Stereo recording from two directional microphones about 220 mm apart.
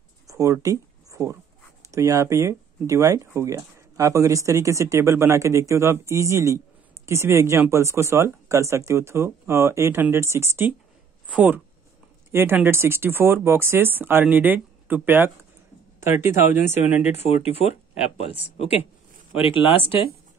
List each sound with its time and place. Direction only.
0.3 s a sound: 15° right (ahead or behind)
1.9 s speech: 15° right (ahead or behind)
16.6 s speech: 30° left (ahead or behind)